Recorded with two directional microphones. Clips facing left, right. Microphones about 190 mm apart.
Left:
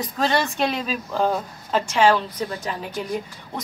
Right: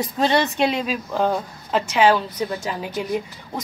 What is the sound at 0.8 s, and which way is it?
A woman's voice, centre (ahead or behind).